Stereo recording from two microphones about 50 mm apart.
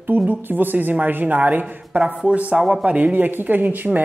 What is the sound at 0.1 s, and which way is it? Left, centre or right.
Speech, right.